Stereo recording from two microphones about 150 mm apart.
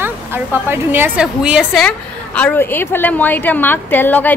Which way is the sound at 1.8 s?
10° left (ahead or behind).